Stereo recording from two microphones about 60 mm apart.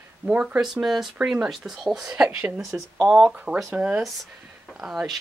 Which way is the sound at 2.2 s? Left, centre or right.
Right.